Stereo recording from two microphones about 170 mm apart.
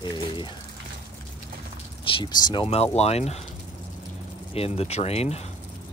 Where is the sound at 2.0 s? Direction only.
30° left (ahead or behind).